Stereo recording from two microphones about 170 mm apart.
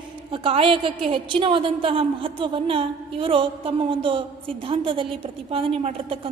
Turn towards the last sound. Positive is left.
turn(degrees=-35)  # may be behind; listen again after turning